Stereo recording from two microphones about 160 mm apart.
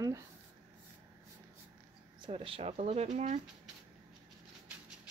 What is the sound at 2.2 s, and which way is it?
Speech, 35° right (ahead or behind).